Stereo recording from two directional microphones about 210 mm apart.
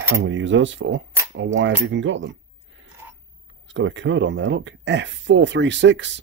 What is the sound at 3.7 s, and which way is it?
Speech, 60° right (ahead or behind).